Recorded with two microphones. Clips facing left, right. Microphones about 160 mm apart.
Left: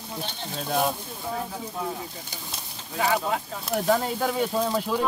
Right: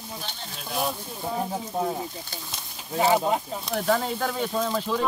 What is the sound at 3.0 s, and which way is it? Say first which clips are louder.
Speech: right 3 dB; 25° right (ahead or behind).